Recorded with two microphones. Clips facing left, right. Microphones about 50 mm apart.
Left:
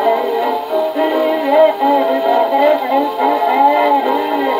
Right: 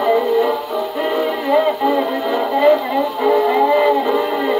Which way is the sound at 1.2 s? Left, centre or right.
Left.